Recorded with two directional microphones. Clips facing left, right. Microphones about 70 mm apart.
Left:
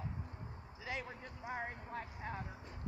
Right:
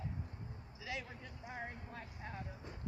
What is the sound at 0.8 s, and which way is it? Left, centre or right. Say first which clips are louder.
Speech: left 2 dB; left.